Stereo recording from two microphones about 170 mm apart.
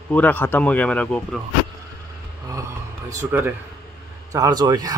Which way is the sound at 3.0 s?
15° right (ahead or behind).